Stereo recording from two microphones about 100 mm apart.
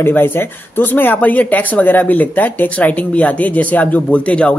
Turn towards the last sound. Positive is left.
turn(degrees=10)  # may be behind; listen again after turning